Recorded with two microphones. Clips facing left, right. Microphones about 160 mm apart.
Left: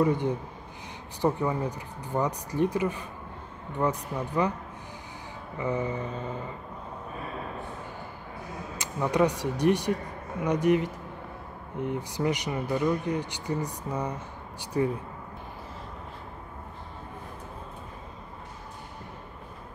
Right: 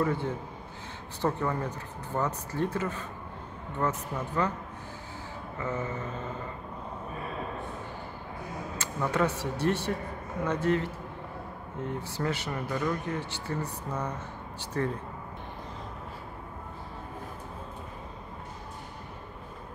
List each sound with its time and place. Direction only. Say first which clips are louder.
0.0 s speech: left 4 dB; 15° left (ahead or behind)
5.6 s speech: left 4 dB; 15° left (ahead or behind)
8.7 s speech: left 3 dB; 15° left (ahead or behind)